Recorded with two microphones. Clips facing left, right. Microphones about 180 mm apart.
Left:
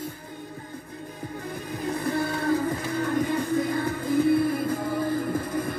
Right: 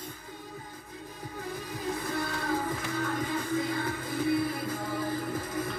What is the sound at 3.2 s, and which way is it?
Music, 50° left (ahead or behind).